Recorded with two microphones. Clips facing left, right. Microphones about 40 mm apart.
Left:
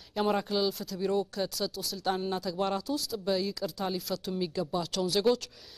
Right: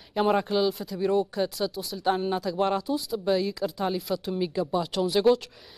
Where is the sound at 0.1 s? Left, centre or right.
Centre.